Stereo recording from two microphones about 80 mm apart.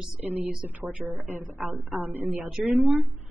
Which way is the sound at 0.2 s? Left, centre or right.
Right.